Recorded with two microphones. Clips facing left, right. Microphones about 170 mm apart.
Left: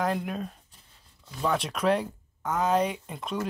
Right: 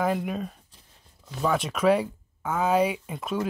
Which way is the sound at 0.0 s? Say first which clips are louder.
Right 2 dB; centre (ahead or behind).